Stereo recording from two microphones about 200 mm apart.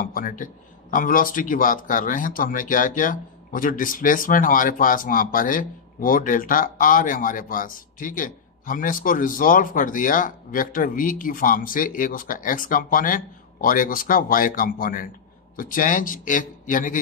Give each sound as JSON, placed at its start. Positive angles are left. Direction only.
{"t": 0.0, "sound": "a man's voice", "side_deg": 45}